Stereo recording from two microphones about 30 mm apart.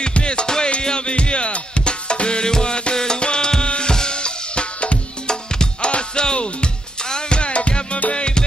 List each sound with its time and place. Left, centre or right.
0.0 s music: left
3.9 s drum: left
5.2 s music: left